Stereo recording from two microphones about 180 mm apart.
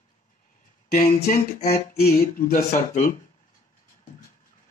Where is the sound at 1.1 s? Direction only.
40° left (ahead or behind).